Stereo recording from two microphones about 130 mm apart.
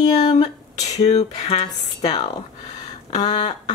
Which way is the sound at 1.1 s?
55° left (ahead or behind).